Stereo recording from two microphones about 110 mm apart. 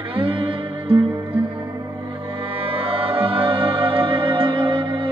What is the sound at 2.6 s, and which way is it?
Music, 55° right (ahead or behind).